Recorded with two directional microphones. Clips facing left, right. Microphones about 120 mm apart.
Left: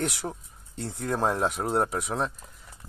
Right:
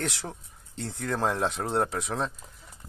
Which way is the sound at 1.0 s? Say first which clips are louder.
Left 1 dB; 10° left (ahead or behind).